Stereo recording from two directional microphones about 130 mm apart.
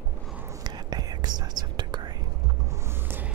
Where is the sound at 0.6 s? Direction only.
30° right (ahead or behind).